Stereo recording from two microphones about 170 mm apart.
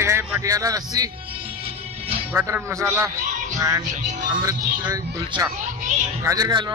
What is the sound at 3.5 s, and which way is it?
Music, 20° right (ahead or behind).